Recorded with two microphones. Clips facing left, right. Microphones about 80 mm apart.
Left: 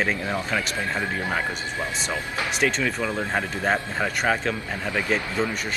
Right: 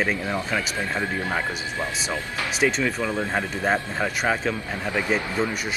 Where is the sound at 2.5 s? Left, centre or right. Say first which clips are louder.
Right 2 dB; centre.